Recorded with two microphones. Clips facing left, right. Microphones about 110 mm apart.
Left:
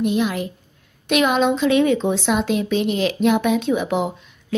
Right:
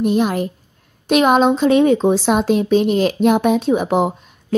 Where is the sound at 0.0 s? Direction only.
45° right (ahead or behind).